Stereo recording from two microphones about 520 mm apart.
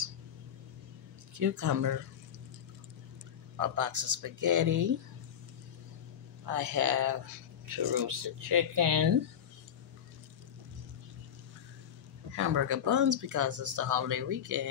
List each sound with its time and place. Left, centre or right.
1.4 s speech: right
3.5 s speech: right
6.4 s speech: right
12.4 s speech: right